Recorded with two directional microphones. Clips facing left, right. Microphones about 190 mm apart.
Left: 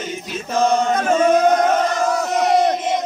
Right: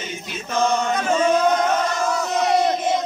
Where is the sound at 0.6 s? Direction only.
45° left (ahead or behind).